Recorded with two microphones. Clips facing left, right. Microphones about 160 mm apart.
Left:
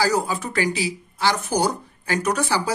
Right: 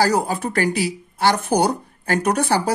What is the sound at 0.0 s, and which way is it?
Speech, 55° right (ahead or behind).